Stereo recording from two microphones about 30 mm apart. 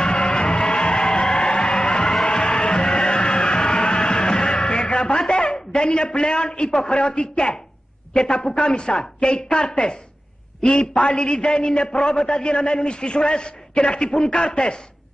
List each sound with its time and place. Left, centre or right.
0.0 s music: left
5.5 s a man's voice: left